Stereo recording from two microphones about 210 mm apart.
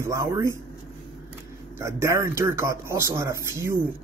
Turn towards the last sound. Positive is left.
turn(degrees=-10)  # may be behind; listen again after turning